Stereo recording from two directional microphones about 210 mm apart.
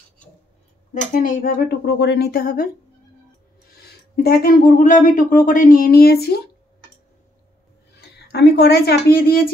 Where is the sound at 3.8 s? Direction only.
50° left (ahead or behind).